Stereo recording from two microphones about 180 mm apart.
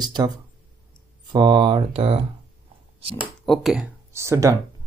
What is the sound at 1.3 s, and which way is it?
Speech, 25° right (ahead or behind).